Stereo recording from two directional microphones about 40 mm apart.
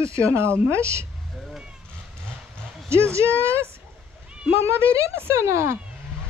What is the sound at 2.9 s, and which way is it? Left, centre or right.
Speech, right.